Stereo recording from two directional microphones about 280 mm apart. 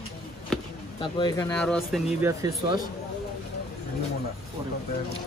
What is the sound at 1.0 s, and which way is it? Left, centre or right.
Speech, centre.